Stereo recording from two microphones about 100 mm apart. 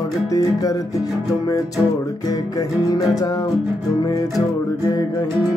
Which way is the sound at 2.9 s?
40° left (ahead or behind).